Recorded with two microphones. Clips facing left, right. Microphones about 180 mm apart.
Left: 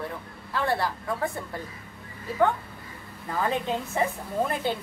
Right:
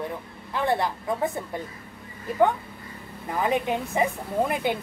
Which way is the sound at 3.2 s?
15° right (ahead or behind).